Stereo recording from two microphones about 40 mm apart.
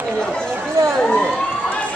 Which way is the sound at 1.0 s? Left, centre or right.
Left.